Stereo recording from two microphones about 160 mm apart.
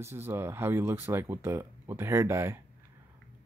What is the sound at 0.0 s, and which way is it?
Speech, 15° right (ahead or behind).